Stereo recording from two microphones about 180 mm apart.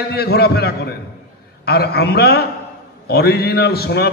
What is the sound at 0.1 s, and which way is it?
A man's voice, 60° left (ahead or behind).